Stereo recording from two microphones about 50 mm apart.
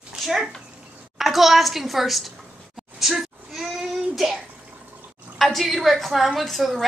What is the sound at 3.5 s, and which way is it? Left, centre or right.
Child singing, centre.